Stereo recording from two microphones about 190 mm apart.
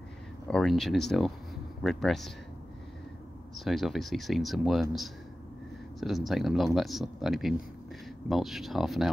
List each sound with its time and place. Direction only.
0.5 s speech: centre (ahead or behind)
3.5 s speech: centre (ahead or behind)
5.9 s speech: centre (ahead or behind)